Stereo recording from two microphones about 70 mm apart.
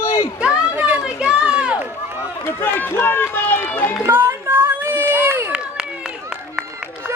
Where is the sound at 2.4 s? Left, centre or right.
Left.